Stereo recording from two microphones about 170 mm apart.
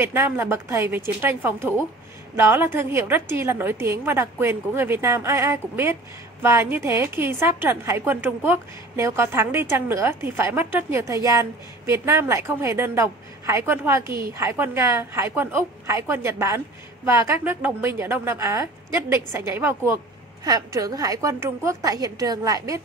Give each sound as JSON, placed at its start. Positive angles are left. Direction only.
{"t": 0.0, "sound": "a woman's voice", "side_deg": -15}